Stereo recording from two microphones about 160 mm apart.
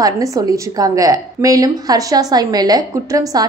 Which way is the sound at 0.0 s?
20° right (ahead or behind).